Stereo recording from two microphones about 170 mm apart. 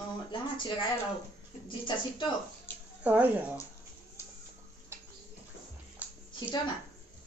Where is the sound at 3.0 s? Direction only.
10° right (ahead or behind).